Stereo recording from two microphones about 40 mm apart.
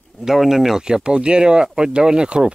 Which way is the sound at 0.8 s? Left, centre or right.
Right.